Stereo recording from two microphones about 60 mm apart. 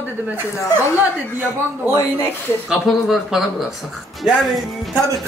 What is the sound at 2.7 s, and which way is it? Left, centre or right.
Speech, centre.